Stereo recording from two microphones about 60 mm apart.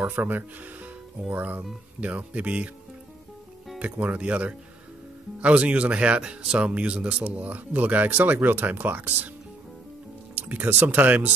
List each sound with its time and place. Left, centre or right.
0.0 s speech: right
3.8 s speech: right
10.3 s speech: right